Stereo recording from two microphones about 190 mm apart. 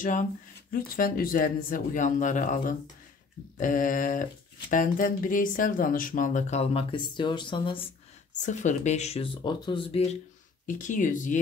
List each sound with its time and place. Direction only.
0.0 s speech: 45° left (ahead or behind); by 7.9 s 25° left (ahead or behind)
8.4 s speech: 40° left (ahead or behind)
10.7 s speech: 45° left (ahead or behind)